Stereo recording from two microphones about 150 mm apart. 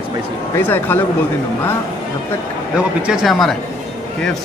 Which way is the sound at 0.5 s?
15° left (ahead or behind).